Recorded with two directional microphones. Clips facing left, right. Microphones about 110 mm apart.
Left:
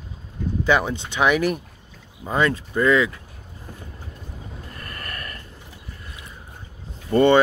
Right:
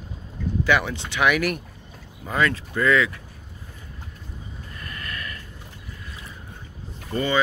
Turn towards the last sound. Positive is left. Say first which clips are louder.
# left 8 dB
turn(degrees=55)  # may be behind; listen again after turning